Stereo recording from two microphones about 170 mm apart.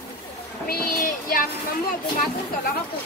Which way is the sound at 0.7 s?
60° left (ahead or behind).